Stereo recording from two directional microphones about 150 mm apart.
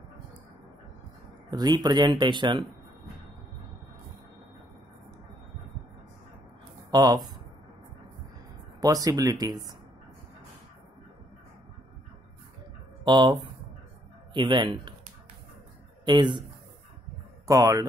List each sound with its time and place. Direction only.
1.5 s speech: 25° right (ahead or behind)
6.9 s speech: 25° right (ahead or behind)
8.8 s speech: 25° right (ahead or behind)
13.0 s speech: 30° right (ahead or behind)
16.1 s speech: 30° right (ahead or behind)
17.5 s speech: 20° right (ahead or behind)